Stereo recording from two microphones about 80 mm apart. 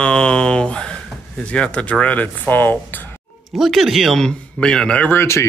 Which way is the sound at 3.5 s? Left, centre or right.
Centre.